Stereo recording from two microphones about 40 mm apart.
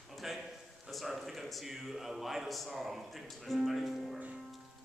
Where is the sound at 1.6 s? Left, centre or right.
Centre.